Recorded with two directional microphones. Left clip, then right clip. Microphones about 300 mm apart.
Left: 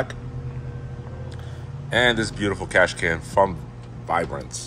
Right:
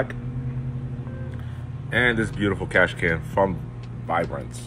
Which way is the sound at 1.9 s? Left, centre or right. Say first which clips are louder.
Left 2 dB; left.